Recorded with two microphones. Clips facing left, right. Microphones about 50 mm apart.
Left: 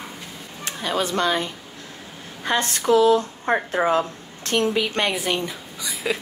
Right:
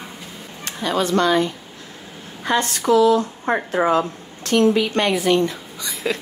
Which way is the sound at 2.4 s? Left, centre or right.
Right.